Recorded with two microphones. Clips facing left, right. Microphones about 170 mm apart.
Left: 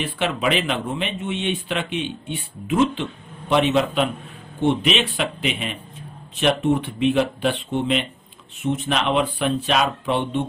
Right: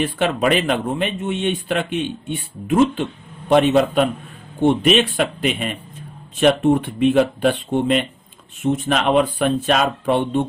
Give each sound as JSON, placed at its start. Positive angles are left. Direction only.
{"t": 0.0, "sound": "speech", "side_deg": -45}